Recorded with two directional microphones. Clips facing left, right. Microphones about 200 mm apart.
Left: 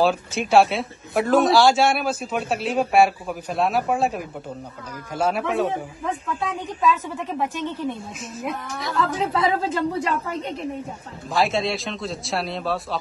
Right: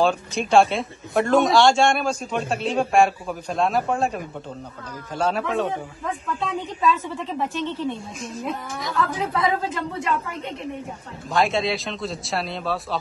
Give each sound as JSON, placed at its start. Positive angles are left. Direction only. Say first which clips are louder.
{"t": 0.0, "sound": "a woman's voice", "louder": "even", "side_deg": 5}
{"t": 9.2, "sound": "a woman's voice", "louder": "left 2 dB", "side_deg": 30}
{"t": 11.3, "sound": "speech", "louder": "even", "side_deg": 0}